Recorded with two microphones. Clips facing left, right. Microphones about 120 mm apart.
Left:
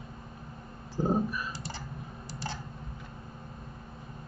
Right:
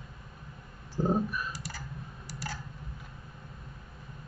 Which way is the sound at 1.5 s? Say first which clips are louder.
Left 2 dB; 25° left (ahead or behind).